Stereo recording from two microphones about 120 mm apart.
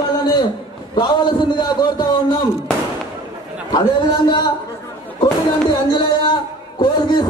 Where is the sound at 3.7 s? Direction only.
40° left (ahead or behind).